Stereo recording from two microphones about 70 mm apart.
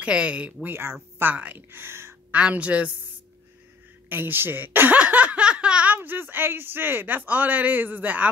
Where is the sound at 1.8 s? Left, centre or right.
Right.